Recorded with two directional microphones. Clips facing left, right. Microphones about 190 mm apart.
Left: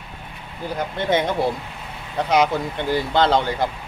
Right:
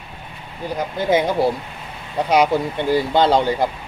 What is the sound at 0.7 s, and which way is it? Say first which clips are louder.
Speech: right 3 dB; 5° right (ahead or behind).